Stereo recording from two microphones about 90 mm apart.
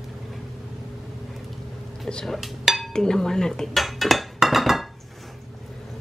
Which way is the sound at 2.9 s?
5° left (ahead or behind).